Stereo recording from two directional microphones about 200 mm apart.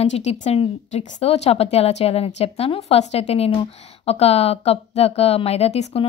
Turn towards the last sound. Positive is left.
turn(degrees=30)  # may be behind; listen again after turning